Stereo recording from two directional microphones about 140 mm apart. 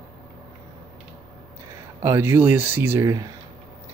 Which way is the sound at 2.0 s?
20° right (ahead or behind).